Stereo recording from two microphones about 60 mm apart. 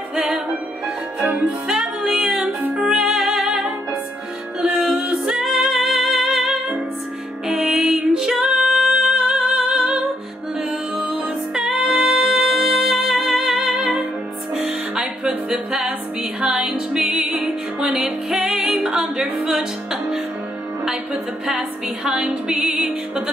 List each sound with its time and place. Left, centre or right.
0.1 s music: centre
14.7 s music: right
15.5 s music: centre